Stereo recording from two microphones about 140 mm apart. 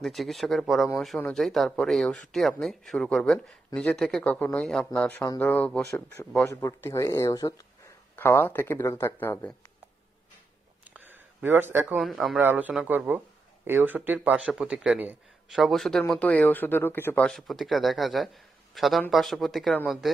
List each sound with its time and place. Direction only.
0.0 s speech: centre (ahead or behind); by 7.6 s 25° left (ahead or behind)
8.2 s speech: 15° left (ahead or behind)
10.8 s a sound: 10° right (ahead or behind)
12.0 s speech: centre (ahead or behind)
12.4 s a man's voice: 10° right (ahead or behind); by 17.3 s 15° left (ahead or behind)
17.3 s speech: centre (ahead or behind)